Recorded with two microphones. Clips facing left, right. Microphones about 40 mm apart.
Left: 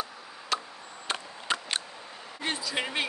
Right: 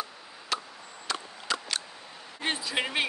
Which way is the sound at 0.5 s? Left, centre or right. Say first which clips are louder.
Left 1 dB; centre.